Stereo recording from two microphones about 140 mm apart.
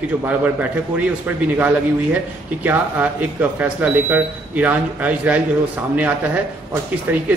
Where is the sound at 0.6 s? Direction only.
10° right (ahead or behind).